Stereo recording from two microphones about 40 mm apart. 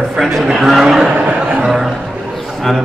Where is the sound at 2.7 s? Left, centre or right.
Centre.